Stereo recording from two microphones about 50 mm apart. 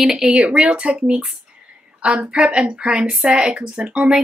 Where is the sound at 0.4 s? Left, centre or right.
Right.